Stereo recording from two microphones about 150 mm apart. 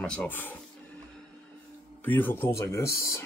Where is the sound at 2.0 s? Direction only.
10° left (ahead or behind).